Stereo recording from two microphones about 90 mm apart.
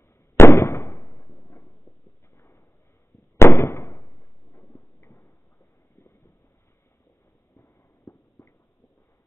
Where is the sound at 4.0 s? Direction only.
40° left (ahead or behind).